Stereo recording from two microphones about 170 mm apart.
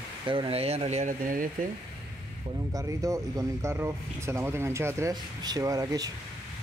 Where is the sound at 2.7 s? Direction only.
20° right (ahead or behind).